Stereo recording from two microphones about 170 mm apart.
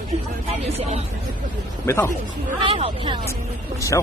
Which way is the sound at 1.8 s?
15° left (ahead or behind).